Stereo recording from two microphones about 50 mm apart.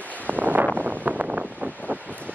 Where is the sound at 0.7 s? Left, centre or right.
Right.